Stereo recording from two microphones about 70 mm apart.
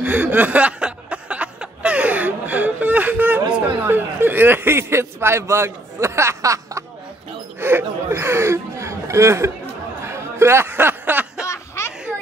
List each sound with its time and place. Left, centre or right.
0.0 s chuckle: right
7.6 s speech: right
10.0 s a sound: right
11.4 s snicker: left